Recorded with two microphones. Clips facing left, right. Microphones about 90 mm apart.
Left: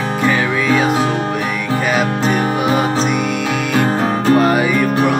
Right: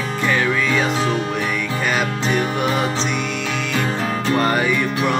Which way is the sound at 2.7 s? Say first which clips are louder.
Left 5 dB; 50° left (ahead or behind).